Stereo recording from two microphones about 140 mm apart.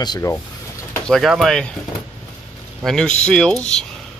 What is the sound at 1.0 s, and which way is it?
Speech, centre (ahead or behind).